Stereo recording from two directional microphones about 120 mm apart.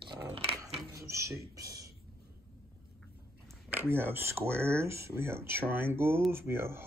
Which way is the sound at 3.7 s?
20° right (ahead or behind).